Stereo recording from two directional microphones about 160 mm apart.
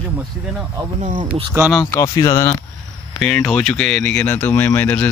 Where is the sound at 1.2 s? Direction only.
30° right (ahead or behind).